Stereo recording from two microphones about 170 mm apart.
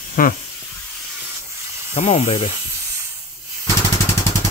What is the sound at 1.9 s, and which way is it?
Speech, 40° left (ahead or behind).